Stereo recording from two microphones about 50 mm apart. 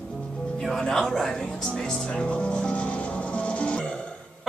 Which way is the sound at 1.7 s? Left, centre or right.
Centre.